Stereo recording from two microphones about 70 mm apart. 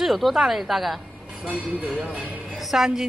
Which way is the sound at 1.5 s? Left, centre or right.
Centre.